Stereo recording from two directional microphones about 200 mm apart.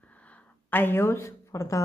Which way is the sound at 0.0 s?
5° left (ahead or behind).